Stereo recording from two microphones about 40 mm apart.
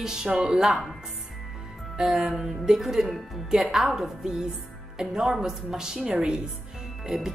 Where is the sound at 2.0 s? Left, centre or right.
Centre.